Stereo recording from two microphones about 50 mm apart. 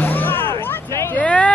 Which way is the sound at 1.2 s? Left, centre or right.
Left.